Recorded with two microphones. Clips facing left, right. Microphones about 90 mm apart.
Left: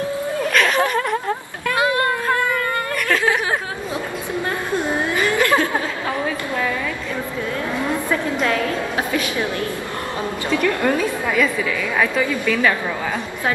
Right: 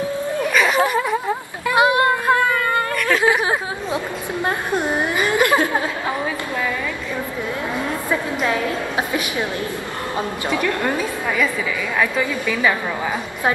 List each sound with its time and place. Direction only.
0.5 s a sound: 5° right (ahead or behind)
8.1 s a woman's voice: 15° right (ahead or behind)
10.5 s a woman's voice: 15° right (ahead or behind)